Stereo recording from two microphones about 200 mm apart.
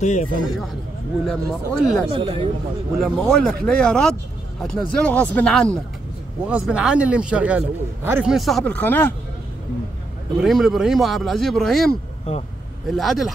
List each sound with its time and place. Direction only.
0.0 s a man's voice: 35° left (ahead or behind)
1.2 s speech: centre (ahead or behind)
2.1 s speech: 25° right (ahead or behind)
3.0 s speech: 5° left (ahead or behind)
10.4 s speech: centre (ahead or behind)